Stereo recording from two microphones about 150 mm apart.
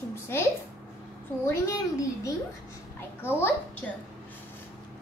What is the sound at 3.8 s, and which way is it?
Speech, 10° left (ahead or behind).